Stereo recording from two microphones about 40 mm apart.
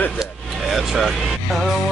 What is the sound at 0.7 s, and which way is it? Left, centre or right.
Speech, centre.